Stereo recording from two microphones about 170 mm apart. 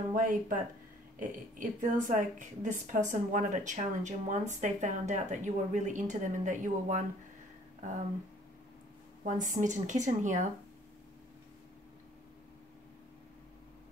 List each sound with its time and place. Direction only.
0.1 s a woman's voice: 50° right (ahead or behind)
1.6 s a woman's voice: 50° right (ahead or behind)
9.2 s a woman's voice: 45° right (ahead or behind)